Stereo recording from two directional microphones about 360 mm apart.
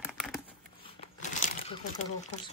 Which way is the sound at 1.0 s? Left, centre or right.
Centre.